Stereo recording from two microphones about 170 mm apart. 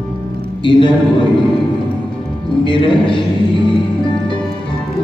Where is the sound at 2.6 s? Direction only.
30° left (ahead or behind).